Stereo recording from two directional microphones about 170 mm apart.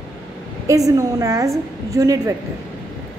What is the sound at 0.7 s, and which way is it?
A woman's voice, 20° right (ahead or behind).